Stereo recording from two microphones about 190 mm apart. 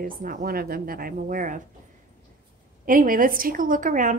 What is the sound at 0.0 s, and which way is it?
A woman's voice, 50° right (ahead or behind).